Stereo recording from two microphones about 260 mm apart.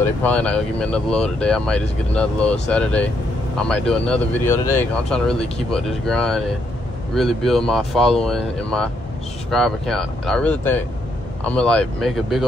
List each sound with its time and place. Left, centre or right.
0.0 s speech: centre